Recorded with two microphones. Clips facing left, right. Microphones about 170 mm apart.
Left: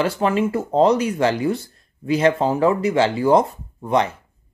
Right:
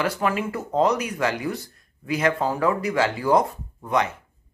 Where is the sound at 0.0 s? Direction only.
30° left (ahead or behind).